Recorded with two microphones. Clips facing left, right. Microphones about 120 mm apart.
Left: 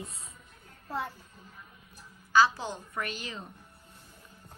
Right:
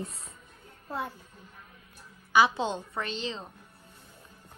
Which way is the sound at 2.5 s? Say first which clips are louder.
Right 5 dB; 25° right (ahead or behind).